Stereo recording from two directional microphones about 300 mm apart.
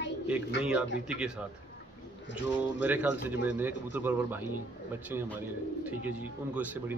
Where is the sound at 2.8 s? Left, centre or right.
Centre.